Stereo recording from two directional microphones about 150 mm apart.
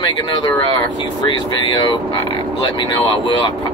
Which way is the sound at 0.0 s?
30° left (ahead or behind).